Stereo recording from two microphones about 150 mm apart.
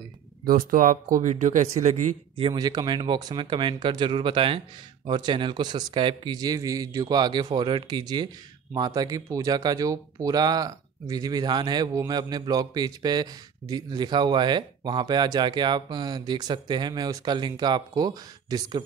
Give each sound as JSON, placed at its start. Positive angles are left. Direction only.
{"t": 0.5, "sound": "speech", "side_deg": -70}
{"t": 2.5, "sound": "speech", "side_deg": -25}